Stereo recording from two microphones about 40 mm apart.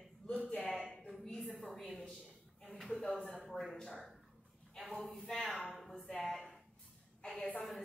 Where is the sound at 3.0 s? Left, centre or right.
Left.